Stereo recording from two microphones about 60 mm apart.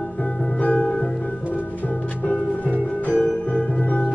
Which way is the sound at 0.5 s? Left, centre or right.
Left.